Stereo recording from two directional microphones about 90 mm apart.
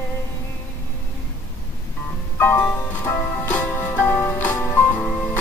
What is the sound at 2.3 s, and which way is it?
Music, 25° left (ahead or behind).